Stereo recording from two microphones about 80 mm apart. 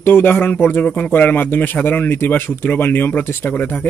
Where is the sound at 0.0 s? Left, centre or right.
Left.